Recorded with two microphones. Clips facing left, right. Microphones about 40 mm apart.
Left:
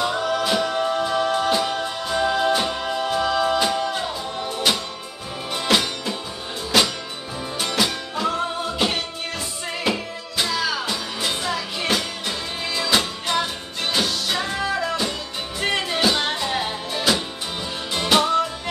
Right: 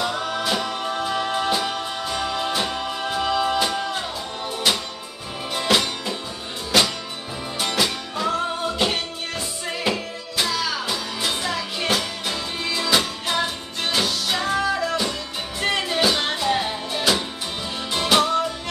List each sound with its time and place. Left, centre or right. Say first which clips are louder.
0.2 s music: left 3 dB; centre
14.6 s music: right 1 dB; centre
15.6 s music: even; centre